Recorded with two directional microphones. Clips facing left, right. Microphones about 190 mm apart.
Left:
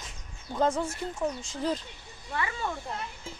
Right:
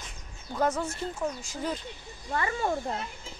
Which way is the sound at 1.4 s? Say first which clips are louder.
Left 3 dB; 30° left (ahead or behind).